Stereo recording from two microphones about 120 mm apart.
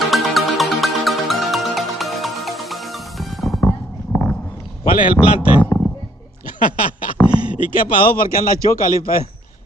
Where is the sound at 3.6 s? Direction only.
15° left (ahead or behind).